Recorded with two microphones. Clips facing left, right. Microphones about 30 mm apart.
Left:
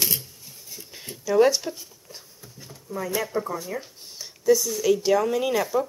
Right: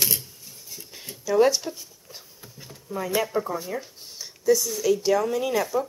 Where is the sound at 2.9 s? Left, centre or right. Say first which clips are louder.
Right 1 dB; right.